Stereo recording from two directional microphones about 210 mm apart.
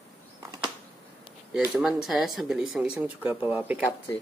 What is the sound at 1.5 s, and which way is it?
Speech, centre (ahead or behind).